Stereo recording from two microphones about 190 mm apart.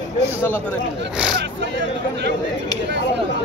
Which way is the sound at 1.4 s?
65° right (ahead or behind).